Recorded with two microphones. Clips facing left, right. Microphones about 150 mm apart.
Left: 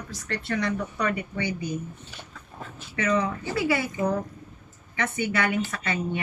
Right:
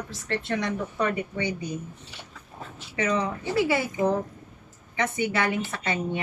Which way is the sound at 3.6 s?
25° right (ahead or behind).